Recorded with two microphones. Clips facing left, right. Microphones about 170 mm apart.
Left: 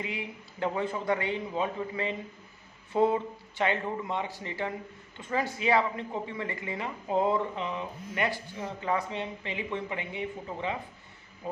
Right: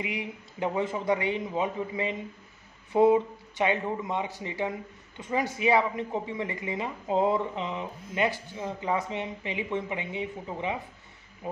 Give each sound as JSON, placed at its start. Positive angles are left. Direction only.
{"t": 0.0, "sound": "speech", "side_deg": -20}